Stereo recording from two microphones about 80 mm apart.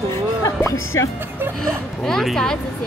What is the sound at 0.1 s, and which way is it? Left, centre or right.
Music, left.